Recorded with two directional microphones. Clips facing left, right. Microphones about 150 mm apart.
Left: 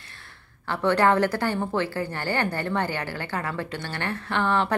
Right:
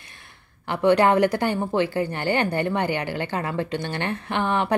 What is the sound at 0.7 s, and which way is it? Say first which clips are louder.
A woman's voice: right 3 dB; 15° right (ahead or behind).